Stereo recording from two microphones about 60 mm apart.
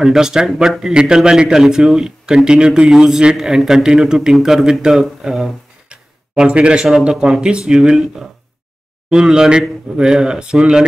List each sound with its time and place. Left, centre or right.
0.0 s speech: centre
5.9 s a sound: centre
7.2 s speech: centre